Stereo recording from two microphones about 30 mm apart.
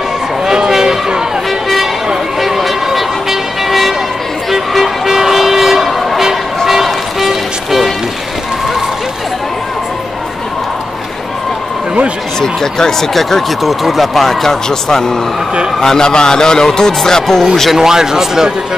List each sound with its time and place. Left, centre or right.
0.5 s a sound: centre
2.4 s vehicle: centre
5.0 s train: centre
12.4 s a man's voice: centre
13.1 s speech: centre
14.2 s a man's voice: centre
17.7 s speech: centre